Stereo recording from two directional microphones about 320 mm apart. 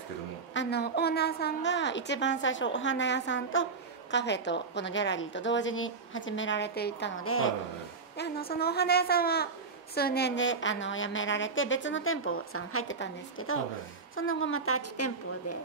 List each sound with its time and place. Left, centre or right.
0.5 s a woman's voice: left
8.2 s a woman's voice: left